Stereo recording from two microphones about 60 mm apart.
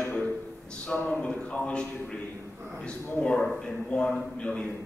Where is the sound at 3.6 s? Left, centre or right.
Centre.